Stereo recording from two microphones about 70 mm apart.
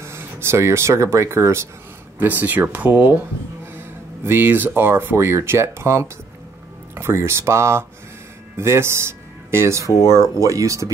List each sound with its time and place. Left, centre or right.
0.0 s speech: right
2.1 s speech: right
10.0 s speech: right